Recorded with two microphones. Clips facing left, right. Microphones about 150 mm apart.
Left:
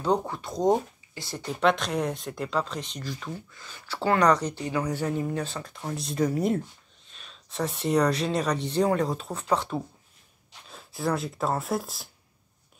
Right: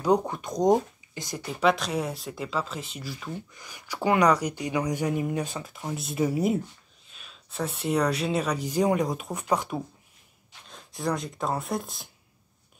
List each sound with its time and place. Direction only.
0.0 s speech: 15° right (ahead or behind)
1.6 s speech: centre (ahead or behind)
10.7 s speech: 5° left (ahead or behind)